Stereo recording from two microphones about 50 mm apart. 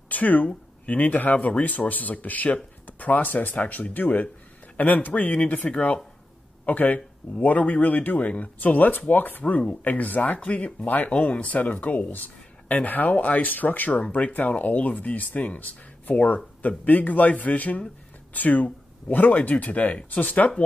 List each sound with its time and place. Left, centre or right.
0.1 s speech: left
9.4 s speech: left